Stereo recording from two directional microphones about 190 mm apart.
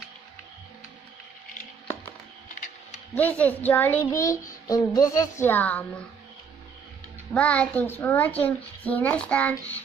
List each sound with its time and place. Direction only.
3.2 s a child's voice: 10° left (ahead or behind)
7.3 s a child's voice: 5° left (ahead or behind)